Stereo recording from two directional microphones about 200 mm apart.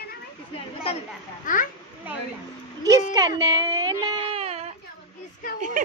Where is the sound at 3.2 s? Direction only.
20° right (ahead or behind).